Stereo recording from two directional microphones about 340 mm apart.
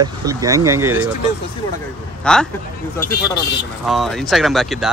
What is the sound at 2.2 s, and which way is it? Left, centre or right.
Speech, centre.